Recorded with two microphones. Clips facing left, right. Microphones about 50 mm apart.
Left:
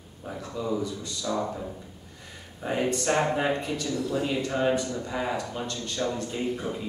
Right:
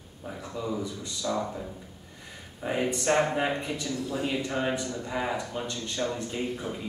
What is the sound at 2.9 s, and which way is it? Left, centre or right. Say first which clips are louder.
Speech: right 1 dB; right.